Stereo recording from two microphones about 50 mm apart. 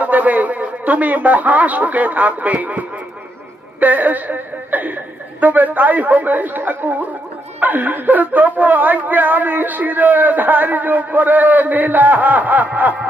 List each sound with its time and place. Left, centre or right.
0.0 s a woman's voice: right
3.8 s a woman's voice: right